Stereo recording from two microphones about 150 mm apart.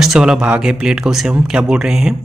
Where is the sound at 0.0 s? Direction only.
5° right (ahead or behind).